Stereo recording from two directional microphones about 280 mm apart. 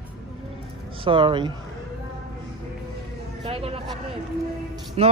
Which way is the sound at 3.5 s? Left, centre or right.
Right.